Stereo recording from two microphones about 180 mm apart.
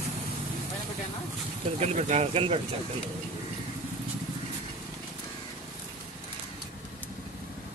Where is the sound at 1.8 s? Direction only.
40° right (ahead or behind).